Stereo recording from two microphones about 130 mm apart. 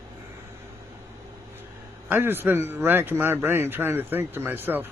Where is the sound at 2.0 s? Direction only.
15° right (ahead or behind).